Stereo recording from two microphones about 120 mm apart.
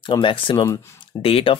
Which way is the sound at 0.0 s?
45° left (ahead or behind).